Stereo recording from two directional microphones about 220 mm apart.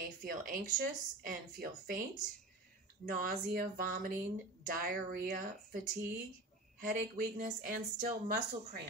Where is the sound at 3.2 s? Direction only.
40° right (ahead or behind).